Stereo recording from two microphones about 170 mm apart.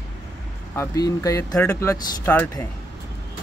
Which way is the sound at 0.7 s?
20° left (ahead or behind).